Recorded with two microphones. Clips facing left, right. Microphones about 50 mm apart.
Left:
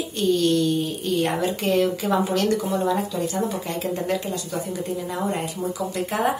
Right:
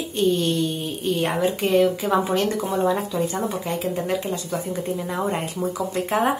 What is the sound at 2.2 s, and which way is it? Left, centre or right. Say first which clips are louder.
Speech: even; right.